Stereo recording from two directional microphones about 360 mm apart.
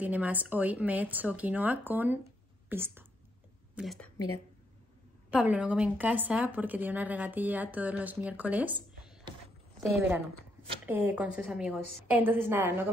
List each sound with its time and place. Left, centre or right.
0.0 s a woman's voice: centre
5.3 s speech: centre